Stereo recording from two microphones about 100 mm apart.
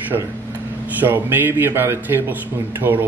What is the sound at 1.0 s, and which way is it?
Speech, 20° right (ahead or behind).